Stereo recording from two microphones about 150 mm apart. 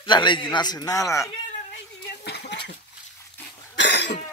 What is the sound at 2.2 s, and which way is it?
Dishes, 90° left.